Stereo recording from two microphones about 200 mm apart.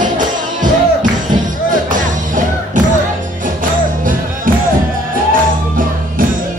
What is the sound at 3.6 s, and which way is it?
Music, 45° right (ahead or behind).